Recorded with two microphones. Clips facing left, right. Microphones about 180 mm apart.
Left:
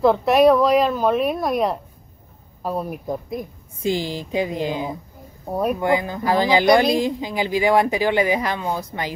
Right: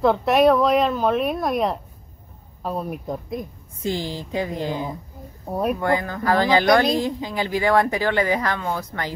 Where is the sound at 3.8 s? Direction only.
15° left (ahead or behind).